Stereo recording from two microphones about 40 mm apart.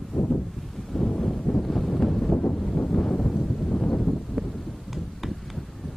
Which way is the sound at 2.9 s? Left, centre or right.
Centre.